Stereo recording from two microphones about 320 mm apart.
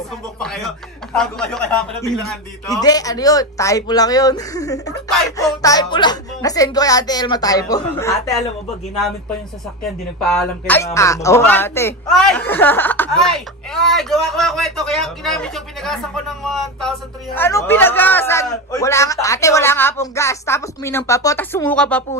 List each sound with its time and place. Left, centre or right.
0.4 s speech: centre
10.2 s speech: centre